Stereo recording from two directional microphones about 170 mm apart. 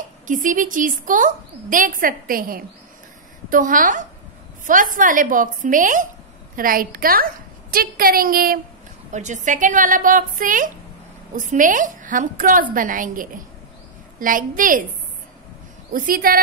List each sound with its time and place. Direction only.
0.3 s a woman's voice: 50° right (ahead or behind)
9.1 s a woman's voice: 45° right (ahead or behind)
15.9 s a woman's voice: 60° right (ahead or behind)